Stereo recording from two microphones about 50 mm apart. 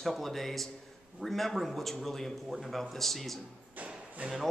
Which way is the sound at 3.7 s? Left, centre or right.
Right.